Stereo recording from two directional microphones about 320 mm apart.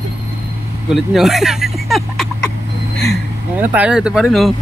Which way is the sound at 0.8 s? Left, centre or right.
Centre.